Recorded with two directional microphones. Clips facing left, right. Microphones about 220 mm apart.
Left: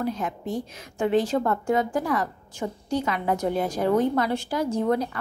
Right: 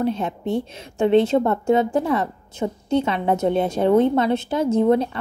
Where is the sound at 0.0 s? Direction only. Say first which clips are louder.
Right 5 dB; 25° right (ahead or behind).